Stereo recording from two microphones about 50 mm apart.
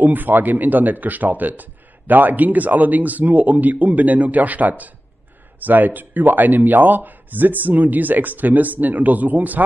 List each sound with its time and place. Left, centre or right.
0.0 s speech: right